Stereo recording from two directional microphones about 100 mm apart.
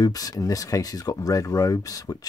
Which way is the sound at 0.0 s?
40° left (ahead or behind).